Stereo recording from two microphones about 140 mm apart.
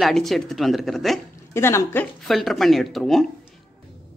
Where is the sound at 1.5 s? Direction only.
20° left (ahead or behind).